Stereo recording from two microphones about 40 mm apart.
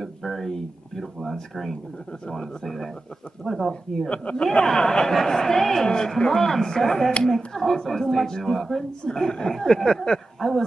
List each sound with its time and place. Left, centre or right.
0.0 s speech: centre
4.1 s speech: left
4.6 s speech: centre
9.0 s speech: centre